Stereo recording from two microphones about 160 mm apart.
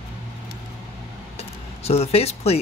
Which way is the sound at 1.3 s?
40° left (ahead or behind).